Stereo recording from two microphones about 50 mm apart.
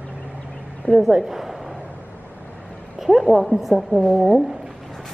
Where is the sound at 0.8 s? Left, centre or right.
Centre.